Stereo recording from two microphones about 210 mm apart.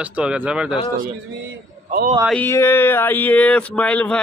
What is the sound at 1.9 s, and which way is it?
Speech, 40° right (ahead or behind).